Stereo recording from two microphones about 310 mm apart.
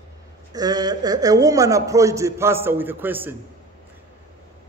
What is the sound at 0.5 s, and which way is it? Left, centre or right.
A man's voice, centre.